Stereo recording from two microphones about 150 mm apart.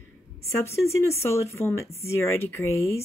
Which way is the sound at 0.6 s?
20° left (ahead or behind).